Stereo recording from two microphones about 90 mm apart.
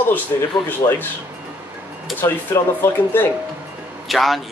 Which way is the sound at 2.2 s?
30° left (ahead or behind).